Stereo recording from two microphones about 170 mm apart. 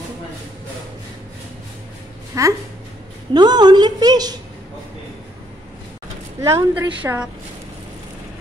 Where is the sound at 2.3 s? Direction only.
20° right (ahead or behind).